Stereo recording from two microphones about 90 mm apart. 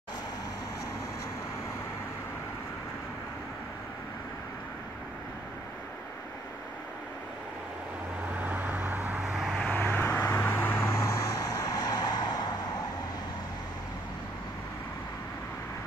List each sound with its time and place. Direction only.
8.4 s vehicle: 20° right (ahead or behind)
9.2 s vehicle: 5° right (ahead or behind)
9.6 s vehicle: 20° left (ahead or behind); by 12.5 s 50° left (ahead or behind)